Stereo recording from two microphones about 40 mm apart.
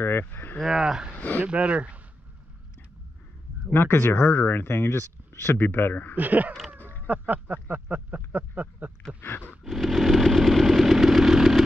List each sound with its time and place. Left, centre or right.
0.0 s a sound: left
0.7 s speech: centre
1.1 s speech: left
1.5 s speech: right
3.7 s speech: left
6.1 s speech: right
9.7 s engine: centre